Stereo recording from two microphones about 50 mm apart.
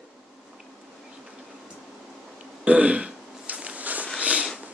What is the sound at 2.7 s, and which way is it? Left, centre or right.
Throat clearing, right.